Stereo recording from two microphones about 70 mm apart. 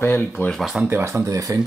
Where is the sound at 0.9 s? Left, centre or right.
Right.